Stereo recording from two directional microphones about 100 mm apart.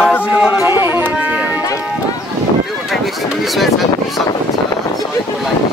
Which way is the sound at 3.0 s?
Centre (ahead or behind).